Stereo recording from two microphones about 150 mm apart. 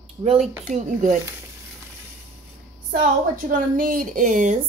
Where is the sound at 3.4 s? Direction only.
65° right (ahead or behind).